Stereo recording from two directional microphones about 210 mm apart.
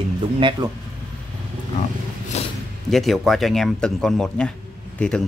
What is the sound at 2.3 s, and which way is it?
Zipper, 30° left (ahead or behind).